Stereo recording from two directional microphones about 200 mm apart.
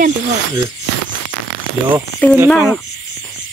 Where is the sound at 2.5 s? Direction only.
5° left (ahead or behind).